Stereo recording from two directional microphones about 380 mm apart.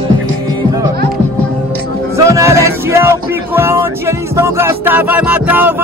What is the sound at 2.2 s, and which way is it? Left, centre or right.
Music, centre.